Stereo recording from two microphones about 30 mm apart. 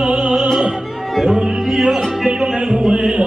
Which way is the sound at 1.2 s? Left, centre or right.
Centre.